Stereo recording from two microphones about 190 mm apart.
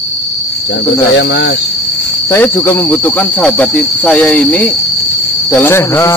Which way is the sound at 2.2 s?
10° left (ahead or behind).